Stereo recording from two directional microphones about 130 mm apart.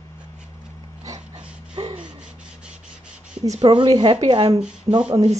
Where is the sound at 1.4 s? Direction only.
10° right (ahead or behind).